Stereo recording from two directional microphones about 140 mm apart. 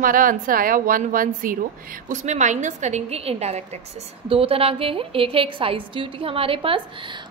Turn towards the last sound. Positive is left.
turn(degrees=-35)  # may be behind; listen again after turning